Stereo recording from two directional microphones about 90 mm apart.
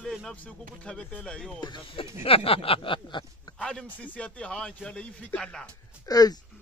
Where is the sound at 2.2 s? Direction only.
90° left; by 3.2 s 70° left (ahead or behind).